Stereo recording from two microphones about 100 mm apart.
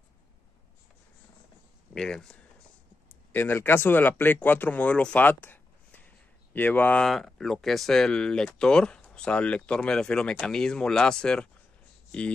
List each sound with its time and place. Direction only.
2.0 s speech: 5° left (ahead or behind)
3.3 s speech: 20° left (ahead or behind)
7.1 s speech: centre (ahead or behind)